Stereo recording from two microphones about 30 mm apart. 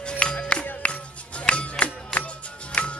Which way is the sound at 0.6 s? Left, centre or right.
Left.